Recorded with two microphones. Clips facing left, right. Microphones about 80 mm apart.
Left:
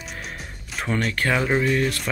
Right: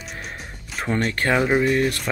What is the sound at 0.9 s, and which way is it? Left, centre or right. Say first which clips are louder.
Speech: right 2 dB; right.